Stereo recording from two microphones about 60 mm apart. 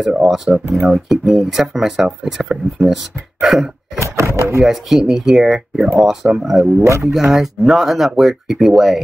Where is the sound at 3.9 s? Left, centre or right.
Right.